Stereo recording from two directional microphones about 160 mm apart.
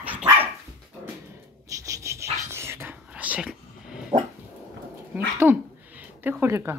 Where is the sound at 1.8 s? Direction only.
20° right (ahead or behind).